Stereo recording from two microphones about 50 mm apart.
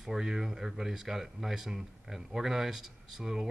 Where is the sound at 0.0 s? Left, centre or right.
Centre.